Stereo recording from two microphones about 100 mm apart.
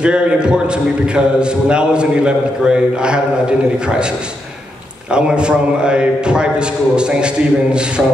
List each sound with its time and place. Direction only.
0.0 s a man's voice: 10° right (ahead or behind)
5.1 s a man's voice: 10° right (ahead or behind)